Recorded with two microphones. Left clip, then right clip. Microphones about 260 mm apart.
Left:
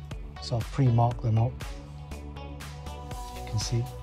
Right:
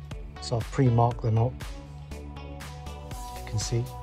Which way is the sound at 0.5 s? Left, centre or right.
Right.